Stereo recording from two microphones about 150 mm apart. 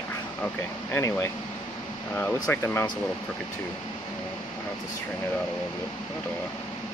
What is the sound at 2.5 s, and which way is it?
Speech, 20° left (ahead or behind).